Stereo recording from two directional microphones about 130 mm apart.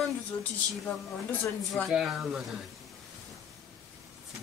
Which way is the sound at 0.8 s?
15° left (ahead or behind).